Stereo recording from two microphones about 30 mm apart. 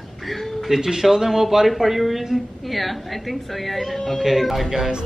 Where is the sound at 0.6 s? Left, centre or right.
Centre.